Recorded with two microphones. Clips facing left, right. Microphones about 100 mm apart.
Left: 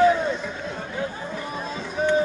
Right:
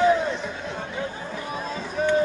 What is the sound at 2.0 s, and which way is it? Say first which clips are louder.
Music: left 1 dB; 5° left (ahead or behind).